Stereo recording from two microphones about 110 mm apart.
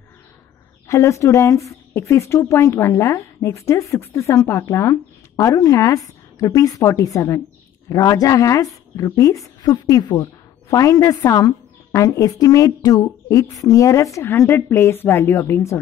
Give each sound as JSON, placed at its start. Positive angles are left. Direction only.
{"t": 0.8, "sound": "a woman's voice", "side_deg": 25}